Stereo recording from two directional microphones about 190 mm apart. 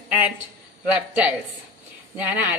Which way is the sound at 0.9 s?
5° right (ahead or behind).